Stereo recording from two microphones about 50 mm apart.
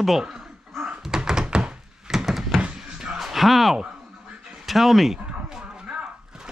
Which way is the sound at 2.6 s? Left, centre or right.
Centre.